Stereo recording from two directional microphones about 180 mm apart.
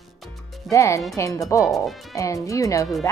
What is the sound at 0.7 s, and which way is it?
Speech, 15° left (ahead or behind).